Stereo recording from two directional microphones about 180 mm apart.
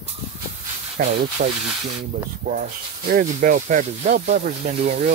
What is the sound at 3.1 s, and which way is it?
Speech, 45° right (ahead or behind).